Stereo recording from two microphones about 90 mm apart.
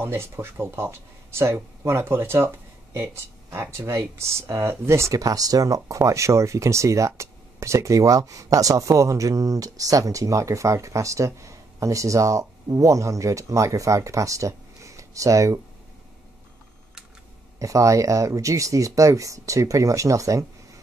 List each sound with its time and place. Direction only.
0.0 s speech: 25° right (ahead or behind)
17.6 s speech: 35° right (ahead or behind)